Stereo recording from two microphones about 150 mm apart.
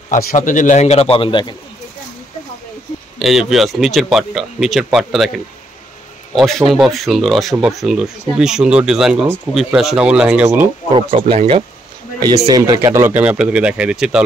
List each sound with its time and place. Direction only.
0.1 s a man's voice: 75° left (ahead or behind); by 1.5 s 35° left (ahead or behind)
3.2 s speech: centre (ahead or behind)
10.9 s speech: 35° right (ahead or behind)
12.4 s speech: 25° right (ahead or behind); by 14.2 s 5° right (ahead or behind)